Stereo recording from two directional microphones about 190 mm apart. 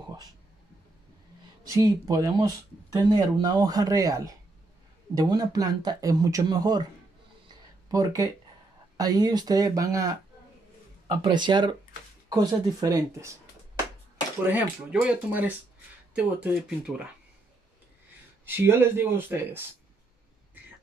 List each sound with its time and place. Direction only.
1.7 s speech: 15° right (ahead or behind)
7.9 s speech: 20° right (ahead or behind)
14.5 s speech: 5° right (ahead or behind)
18.4 s speech: 10° right (ahead or behind)